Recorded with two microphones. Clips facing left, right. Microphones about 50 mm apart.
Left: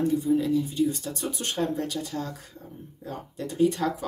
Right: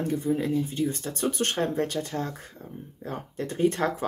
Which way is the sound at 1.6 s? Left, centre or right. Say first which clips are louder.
Right 1 dB; right.